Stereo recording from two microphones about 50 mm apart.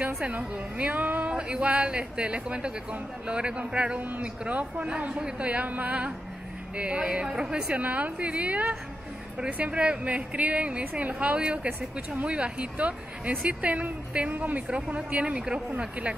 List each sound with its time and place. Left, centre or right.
0.2 s speech: right
1.3 s speech: right
7.8 s speech: right